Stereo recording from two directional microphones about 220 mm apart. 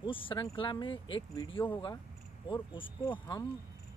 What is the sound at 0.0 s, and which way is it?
Speech, 25° left (ahead or behind).